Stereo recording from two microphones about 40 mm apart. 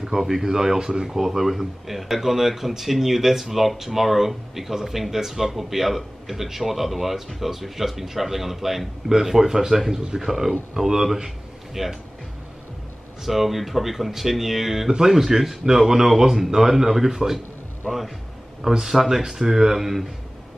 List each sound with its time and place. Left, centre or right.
0.0 s a man's voice: centre
13.2 s speech: centre
14.9 s a man's voice: centre